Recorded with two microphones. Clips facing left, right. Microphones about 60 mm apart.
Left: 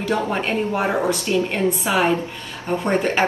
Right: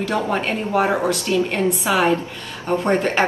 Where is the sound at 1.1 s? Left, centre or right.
Left.